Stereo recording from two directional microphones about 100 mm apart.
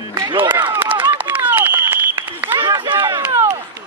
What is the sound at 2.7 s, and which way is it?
Chop, 50° right (ahead or behind).